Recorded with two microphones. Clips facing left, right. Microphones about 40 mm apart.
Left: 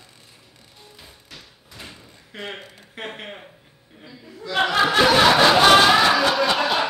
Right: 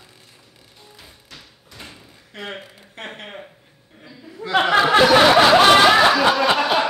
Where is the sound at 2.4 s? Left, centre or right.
Centre.